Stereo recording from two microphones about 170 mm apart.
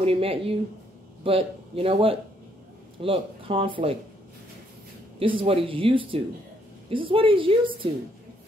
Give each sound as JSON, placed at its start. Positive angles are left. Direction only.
{"t": 0.0, "sound": "speech", "side_deg": -35}
{"t": 5.2, "sound": "speech", "side_deg": -30}